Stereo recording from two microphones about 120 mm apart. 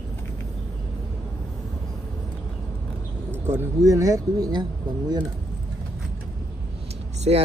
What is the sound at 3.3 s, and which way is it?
Speech, 20° right (ahead or behind).